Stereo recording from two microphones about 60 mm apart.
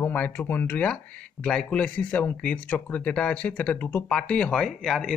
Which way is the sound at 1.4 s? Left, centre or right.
Centre.